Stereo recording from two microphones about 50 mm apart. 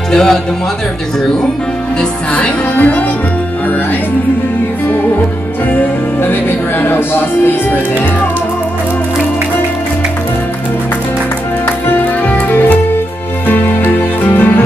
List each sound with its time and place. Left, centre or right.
0.1 s speech: centre
2.3 s music: left
5.7 s speech: left
12.2 s music: left
13.9 s music: left